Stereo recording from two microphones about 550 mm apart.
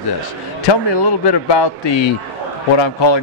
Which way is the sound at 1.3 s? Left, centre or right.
Left.